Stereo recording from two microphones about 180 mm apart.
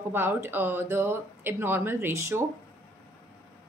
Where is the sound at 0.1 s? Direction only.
10° right (ahead or behind).